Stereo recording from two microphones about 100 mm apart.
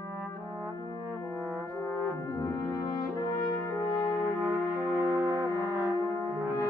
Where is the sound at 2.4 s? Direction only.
40° left (ahead or behind).